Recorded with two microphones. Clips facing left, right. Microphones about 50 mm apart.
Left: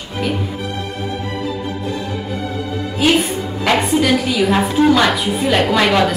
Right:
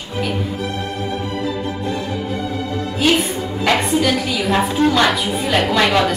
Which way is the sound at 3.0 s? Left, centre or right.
Centre.